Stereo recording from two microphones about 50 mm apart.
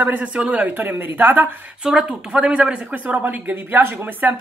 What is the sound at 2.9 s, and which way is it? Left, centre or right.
Speech, right.